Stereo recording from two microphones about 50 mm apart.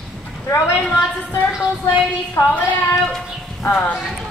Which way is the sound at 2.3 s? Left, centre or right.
Left.